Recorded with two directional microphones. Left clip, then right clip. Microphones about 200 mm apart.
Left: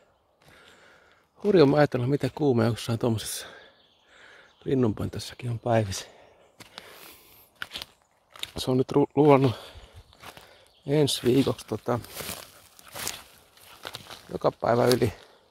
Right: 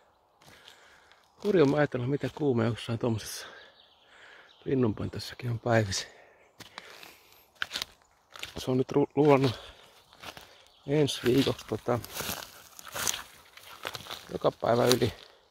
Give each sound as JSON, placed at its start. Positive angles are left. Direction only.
{"t": 1.5, "sound": "speech", "side_deg": 30}
{"t": 7.5, "sound": "a sound", "side_deg": 0}
{"t": 8.5, "sound": "speech", "side_deg": 25}
{"t": 10.9, "sound": "speech", "side_deg": 30}
{"t": 11.2, "sound": "speech", "side_deg": 0}
{"t": 12.0, "sound": "a sound", "side_deg": -5}
{"t": 14.4, "sound": "speech", "side_deg": 25}